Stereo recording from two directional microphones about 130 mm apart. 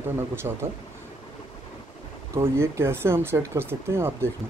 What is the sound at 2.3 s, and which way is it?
Speech, 20° right (ahead or behind).